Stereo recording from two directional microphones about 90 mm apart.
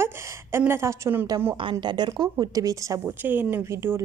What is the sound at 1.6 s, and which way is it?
A woman's voice, 60° right (ahead or behind).